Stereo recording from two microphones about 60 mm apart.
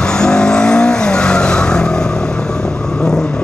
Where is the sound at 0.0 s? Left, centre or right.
Centre.